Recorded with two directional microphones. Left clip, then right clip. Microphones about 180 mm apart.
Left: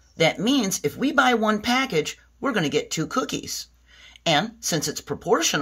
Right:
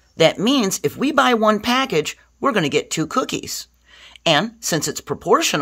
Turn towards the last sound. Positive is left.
turn(degrees=-60)  # may be behind; listen again after turning